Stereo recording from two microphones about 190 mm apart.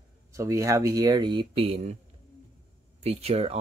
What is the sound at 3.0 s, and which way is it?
Speech, 35° right (ahead or behind).